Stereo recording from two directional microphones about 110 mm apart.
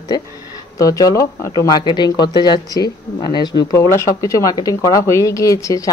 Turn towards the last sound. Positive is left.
turn(degrees=30)  # may be behind; listen again after turning